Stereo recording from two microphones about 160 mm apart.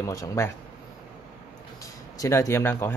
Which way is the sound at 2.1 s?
20° left (ahead or behind).